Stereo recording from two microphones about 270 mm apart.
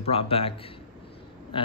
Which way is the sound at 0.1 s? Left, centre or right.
Left.